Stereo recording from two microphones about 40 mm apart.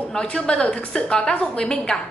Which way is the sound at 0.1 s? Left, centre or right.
Left.